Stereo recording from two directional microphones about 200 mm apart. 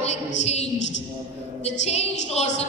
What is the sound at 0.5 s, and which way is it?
A woman's voice, 30° left (ahead or behind).